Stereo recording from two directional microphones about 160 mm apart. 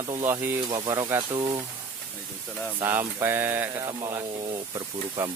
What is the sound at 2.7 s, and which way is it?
Speech, 15° right (ahead or behind).